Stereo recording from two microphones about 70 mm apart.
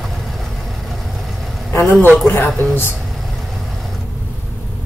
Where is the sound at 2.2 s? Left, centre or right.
Left.